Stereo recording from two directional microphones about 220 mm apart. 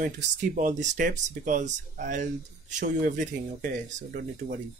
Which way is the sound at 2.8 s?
50° right (ahead or behind).